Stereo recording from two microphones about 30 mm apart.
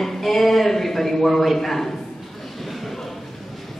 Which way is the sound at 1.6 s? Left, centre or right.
Centre.